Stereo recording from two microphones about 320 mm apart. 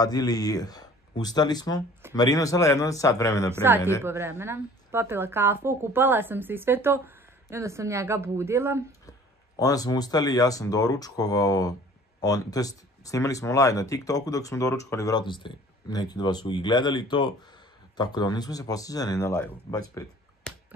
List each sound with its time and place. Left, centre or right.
0.0 s speech: centre
3.6 s a woman's voice: centre
9.6 s speech: centre
19.9 s a sound: centre